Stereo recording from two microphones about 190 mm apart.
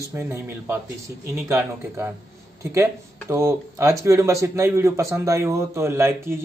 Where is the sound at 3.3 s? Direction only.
15° right (ahead or behind).